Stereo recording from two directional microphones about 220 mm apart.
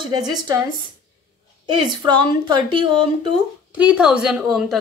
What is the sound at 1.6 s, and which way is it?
Speech, 20° right (ahead or behind).